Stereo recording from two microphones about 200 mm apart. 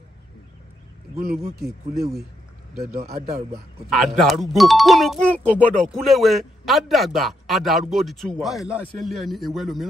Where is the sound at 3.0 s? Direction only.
35° right (ahead or behind).